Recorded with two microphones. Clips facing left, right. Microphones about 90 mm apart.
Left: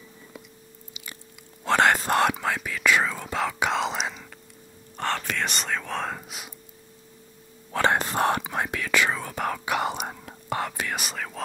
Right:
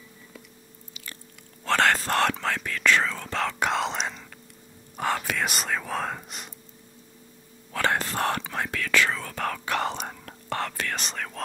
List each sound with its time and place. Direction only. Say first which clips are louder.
1.6 s whispering: left 2 dB; 15° left (ahead or behind)
4.9 s speech: right 1 dB; 5° right (ahead or behind)
7.7 s whispering: left 3 dB; 20° left (ahead or behind); by 11.4 s 5° left (ahead or behind)